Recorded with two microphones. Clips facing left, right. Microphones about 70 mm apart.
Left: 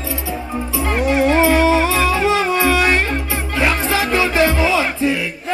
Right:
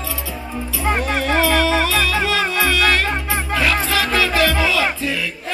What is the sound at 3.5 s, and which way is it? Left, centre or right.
Music, left.